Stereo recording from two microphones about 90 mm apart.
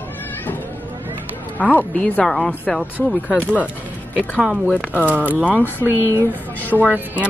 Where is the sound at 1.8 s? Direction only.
15° left (ahead or behind).